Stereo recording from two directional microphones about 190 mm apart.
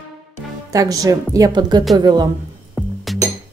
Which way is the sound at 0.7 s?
20° right (ahead or behind).